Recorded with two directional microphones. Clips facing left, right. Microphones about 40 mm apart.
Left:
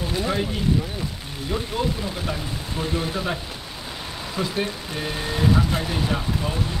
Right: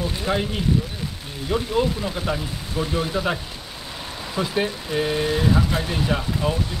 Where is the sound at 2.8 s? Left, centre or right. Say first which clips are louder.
Right 3 dB; centre.